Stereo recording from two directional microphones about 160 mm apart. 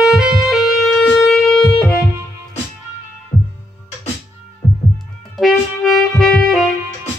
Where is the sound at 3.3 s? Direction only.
30° left (ahead or behind).